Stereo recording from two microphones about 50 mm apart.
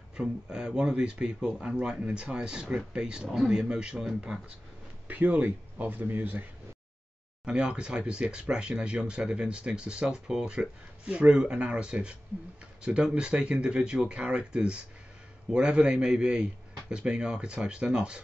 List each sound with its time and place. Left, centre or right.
0.2 s speech: centre
5.0 s speech: right
7.4 s speech: centre